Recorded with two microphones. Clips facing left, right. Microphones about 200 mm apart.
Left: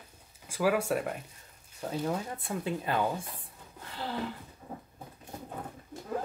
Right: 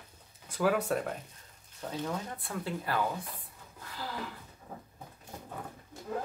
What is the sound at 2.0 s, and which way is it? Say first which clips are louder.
Speech: left 3 dB; 25° left (ahead or behind).